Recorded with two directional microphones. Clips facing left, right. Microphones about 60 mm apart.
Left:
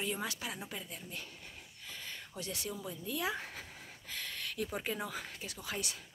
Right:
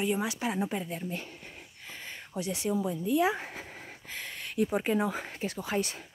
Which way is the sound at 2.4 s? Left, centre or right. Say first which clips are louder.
Right 12 dB; centre.